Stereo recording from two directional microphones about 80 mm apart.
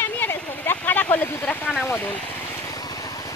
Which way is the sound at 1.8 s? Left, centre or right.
Left.